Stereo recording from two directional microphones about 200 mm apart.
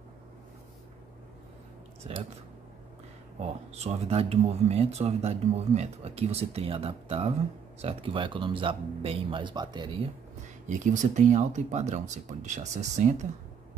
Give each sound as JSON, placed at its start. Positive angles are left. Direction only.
{"t": 2.1, "sound": "speech", "side_deg": -30}
{"t": 3.7, "sound": "speech", "side_deg": -30}
{"t": 10.7, "sound": "speech", "side_deg": -40}